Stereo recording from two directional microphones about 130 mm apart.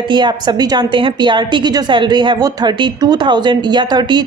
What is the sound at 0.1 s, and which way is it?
Speech, 35° right (ahead or behind).